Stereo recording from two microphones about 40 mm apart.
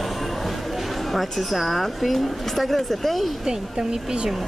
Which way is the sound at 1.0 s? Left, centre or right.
Centre.